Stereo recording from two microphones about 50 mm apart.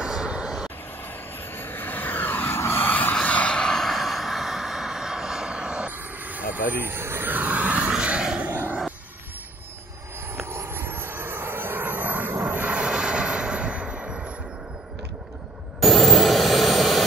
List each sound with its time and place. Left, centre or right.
0.0 s vehicle: centre
1.5 s vehicle: left
2.9 s a sound: left
3.2 s vehicle: left
3.7 s vehicle: centre
5.9 s vehicle: right
8.0 s a sound: centre
10.3 s vehicle: right
12.4 s aircraft: right
12.8 s a sound: centre
15.8 s vehicle: centre